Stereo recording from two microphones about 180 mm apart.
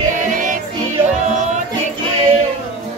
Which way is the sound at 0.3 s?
45° right (ahead or behind).